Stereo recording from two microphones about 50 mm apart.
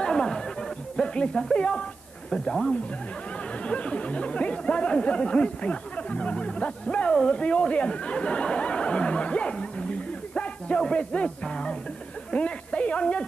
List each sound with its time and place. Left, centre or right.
0.0 s music: centre
2.3 s speech: centre
12.3 s a sound: left